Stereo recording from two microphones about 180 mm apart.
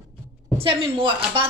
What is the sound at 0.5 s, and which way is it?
Speech, 30° right (ahead or behind).